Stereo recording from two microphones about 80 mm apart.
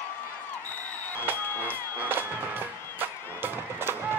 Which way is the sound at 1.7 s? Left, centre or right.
Right.